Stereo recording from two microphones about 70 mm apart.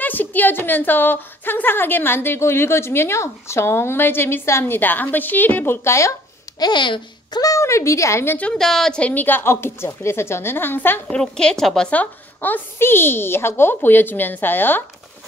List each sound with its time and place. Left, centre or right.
0.0 s a woman's voice: left
5.9 s a woman's voice: left
6.6 s a child's voice: left
7.3 s a sound: left
7.6 s a woman's voice: left
8.5 s a woman's voice: centre
9.0 s a woman's voice: left
11.1 s a woman's voice: centre
11.9 s speech: left